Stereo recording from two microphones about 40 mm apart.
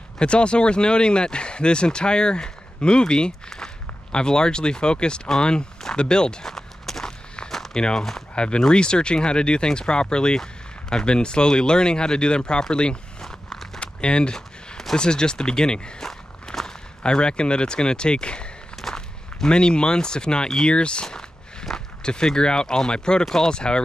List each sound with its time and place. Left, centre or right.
0.2 s speech: left
5.9 s walk: left
7.8 s speech: centre
8.4 s speech: left
13.2 s a sound: centre
13.7 s a sound: left
15.0 s speech: left
16.1 s walk: centre
18.8 s speech: centre